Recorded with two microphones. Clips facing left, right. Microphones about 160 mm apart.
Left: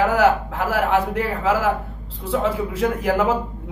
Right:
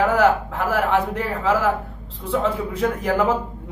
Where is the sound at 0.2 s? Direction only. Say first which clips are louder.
Even; 5° left (ahead or behind).